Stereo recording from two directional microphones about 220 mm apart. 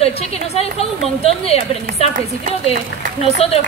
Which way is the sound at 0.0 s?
30° left (ahead or behind).